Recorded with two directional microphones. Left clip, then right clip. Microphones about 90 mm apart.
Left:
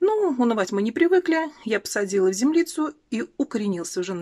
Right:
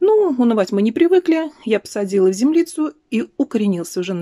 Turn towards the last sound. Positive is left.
turn(degrees=-20)  # may be behind; listen again after turning